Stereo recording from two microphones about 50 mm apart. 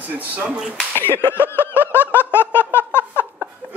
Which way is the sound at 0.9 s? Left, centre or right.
Left.